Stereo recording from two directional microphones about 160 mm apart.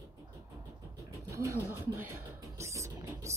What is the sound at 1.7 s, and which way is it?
Music, 15° right (ahead or behind).